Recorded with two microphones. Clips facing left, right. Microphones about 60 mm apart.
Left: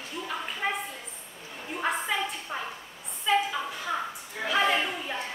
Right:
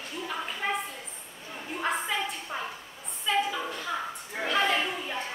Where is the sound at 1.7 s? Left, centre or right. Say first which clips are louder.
Left 1 dB; centre.